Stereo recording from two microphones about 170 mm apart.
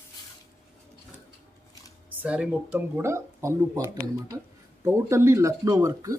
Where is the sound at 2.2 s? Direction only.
5° right (ahead or behind).